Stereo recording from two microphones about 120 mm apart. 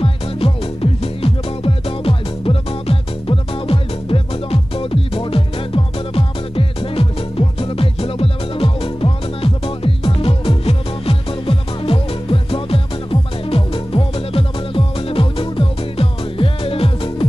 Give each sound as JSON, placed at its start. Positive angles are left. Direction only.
{"t": 0.0, "sound": "music", "side_deg": 50}